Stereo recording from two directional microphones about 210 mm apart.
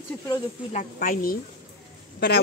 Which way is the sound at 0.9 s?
45° left (ahead or behind).